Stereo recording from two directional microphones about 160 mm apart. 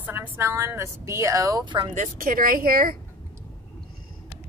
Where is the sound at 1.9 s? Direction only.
55° right (ahead or behind).